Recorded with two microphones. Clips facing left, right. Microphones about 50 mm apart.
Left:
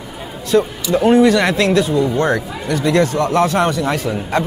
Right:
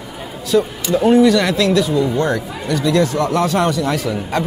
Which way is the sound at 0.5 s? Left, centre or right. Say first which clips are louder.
Left 1 dB; left.